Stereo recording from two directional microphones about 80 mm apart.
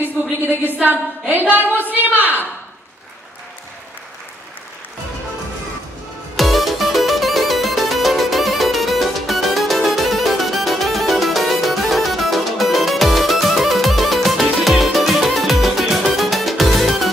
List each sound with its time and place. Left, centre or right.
0.7 s a sound: right
1.8 s a woman's voice: right
6.3 s music: centre